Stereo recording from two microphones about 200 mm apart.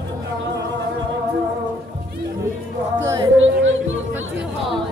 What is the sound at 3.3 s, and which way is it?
Music, 70° right (ahead or behind).